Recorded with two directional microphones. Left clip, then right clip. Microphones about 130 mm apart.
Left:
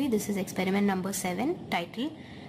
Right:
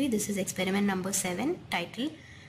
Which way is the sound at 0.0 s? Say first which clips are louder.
Left 1 dB; 40° left (ahead or behind).